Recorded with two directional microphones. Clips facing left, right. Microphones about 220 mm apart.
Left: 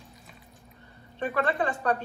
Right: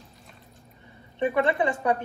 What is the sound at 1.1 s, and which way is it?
Speech, 15° right (ahead or behind).